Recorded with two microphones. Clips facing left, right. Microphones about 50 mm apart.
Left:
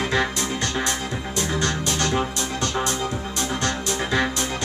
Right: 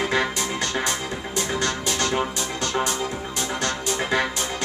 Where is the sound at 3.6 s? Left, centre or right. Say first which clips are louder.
Right 1 dB; right.